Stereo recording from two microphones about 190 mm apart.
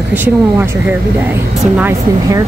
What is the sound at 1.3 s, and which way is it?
Speech, 10° right (ahead or behind).